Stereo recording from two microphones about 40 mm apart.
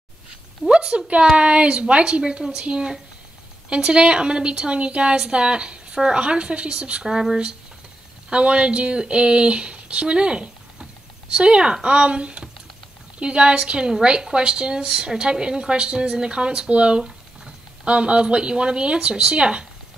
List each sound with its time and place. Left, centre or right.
0.7 s a woman's voice: right